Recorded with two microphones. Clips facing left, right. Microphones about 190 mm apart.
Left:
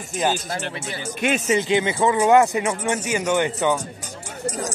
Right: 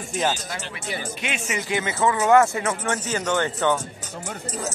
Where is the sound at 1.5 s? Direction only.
20° left (ahead or behind).